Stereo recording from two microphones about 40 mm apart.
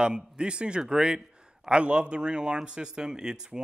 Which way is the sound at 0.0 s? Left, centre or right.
Right.